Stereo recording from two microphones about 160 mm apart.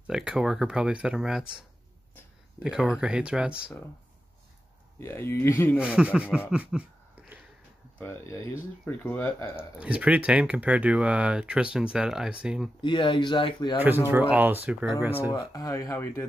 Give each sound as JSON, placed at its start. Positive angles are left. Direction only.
{"t": 0.0, "sound": "speech", "side_deg": -5}
{"t": 2.6, "sound": "speech", "side_deg": -5}
{"t": 5.0, "sound": "speech", "side_deg": 15}
{"t": 5.8, "sound": "speech", "side_deg": -5}
{"t": 6.5, "sound": "a sound", "side_deg": -10}
{"t": 8.0, "sound": "speech", "side_deg": 15}
{"t": 9.8, "sound": "speech", "side_deg": -5}
{"t": 12.8, "sound": "speech", "side_deg": 30}
{"t": 13.7, "sound": "speech", "side_deg": -10}
{"t": 15.3, "sound": "speech", "side_deg": 20}